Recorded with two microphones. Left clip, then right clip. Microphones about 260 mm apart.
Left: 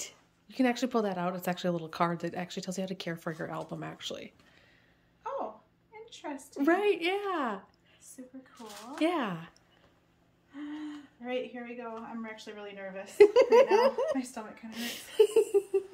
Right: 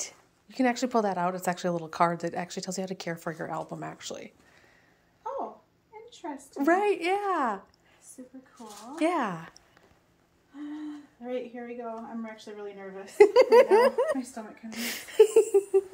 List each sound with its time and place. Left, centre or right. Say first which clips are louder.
0.0 s speech: right 4 dB; centre
6.5 s speech: right 3 dB; centre
9.0 s speech: right 3 dB; centre
11.2 s speech: right 1 dB; left
13.2 s a sound: right 3 dB; centre
14.7 s speech: right 6 dB; centre